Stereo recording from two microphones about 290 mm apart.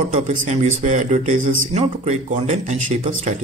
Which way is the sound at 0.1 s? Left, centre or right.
Right.